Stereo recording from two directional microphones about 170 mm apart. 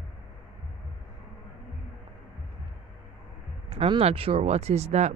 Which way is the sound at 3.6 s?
35° right (ahead or behind).